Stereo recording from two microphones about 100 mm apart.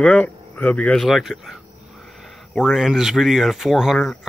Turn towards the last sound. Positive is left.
turn(degrees=-5)  # may be behind; listen again after turning